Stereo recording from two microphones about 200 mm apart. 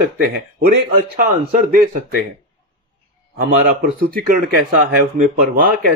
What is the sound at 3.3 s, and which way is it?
Speech, 45° right (ahead or behind).